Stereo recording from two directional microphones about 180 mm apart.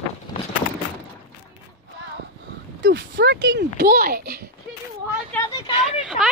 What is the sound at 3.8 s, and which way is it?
Speech, 55° right (ahead or behind).